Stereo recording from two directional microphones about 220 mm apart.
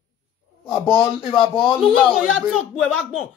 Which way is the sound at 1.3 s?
25° left (ahead or behind).